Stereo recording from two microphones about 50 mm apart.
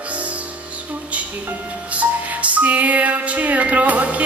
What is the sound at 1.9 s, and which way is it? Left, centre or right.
Music, right.